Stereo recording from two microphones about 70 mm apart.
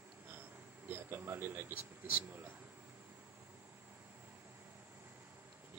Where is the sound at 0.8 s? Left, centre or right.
Right.